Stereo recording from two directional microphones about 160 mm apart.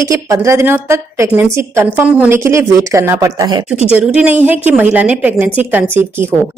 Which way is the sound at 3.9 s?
5° right (ahead or behind).